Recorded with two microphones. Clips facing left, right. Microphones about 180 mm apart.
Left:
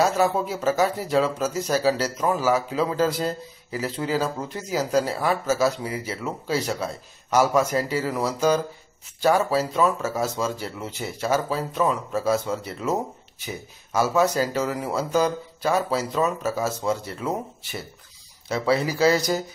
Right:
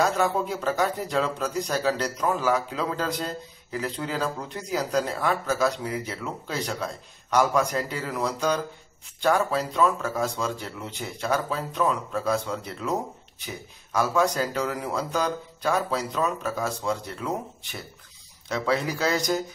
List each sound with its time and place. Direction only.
0.0 s a man's voice: 5° left (ahead or behind)
13.9 s a man's voice: 5° left (ahead or behind)